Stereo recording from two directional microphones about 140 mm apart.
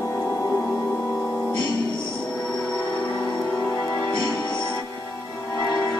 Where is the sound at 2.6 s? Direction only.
10° left (ahead or behind).